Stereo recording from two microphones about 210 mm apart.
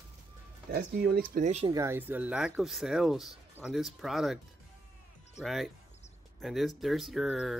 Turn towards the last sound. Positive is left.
turn(degrees=0)  # may be behind; listen again after turning